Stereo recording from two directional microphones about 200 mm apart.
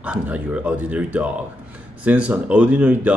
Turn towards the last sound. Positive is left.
turn(degrees=-10)  # may be behind; listen again after turning